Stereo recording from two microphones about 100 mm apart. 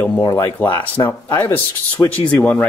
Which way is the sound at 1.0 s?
40° left (ahead or behind).